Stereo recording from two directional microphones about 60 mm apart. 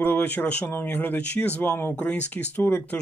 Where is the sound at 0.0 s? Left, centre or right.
Left.